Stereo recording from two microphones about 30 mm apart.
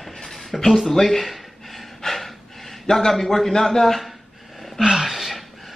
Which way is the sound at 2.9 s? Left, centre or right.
Centre.